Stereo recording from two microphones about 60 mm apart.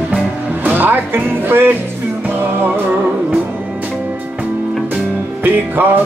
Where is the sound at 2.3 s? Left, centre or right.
Right.